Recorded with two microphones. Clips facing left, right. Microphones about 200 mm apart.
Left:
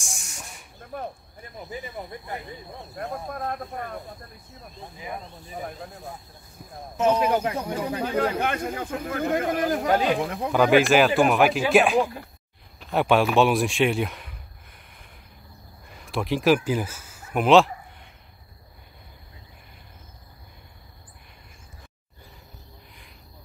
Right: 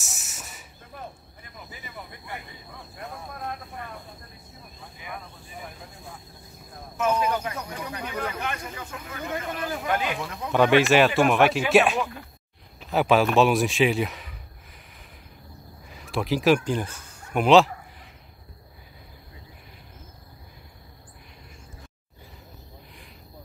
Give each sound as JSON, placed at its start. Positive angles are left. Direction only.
{"t": 0.0, "sound": "hiss", "side_deg": -5}
{"t": 1.7, "sound": "speech", "side_deg": 40}
{"t": 5.0, "sound": "speech", "side_deg": 30}
{"t": 7.2, "sound": "speech", "side_deg": 30}
{"t": 8.4, "sound": "speech", "side_deg": 55}
{"t": 9.8, "sound": "speech", "side_deg": 35}
{"t": 10.5, "sound": "a man's voice", "side_deg": 0}
{"t": 15.9, "sound": "speech", "side_deg": 0}